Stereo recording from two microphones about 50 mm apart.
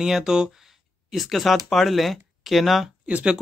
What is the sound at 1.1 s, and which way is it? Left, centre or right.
Speech, centre.